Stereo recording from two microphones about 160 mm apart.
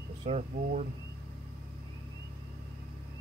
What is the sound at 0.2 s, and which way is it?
Speech, 50° right (ahead or behind).